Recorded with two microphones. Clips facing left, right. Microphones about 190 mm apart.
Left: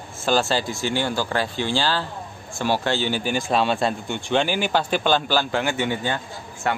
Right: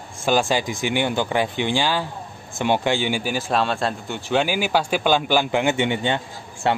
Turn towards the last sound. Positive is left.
turn(degrees=-25)  # may be behind; listen again after turning